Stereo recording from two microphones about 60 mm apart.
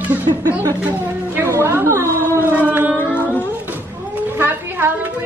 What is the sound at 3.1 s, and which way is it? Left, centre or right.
Music, left.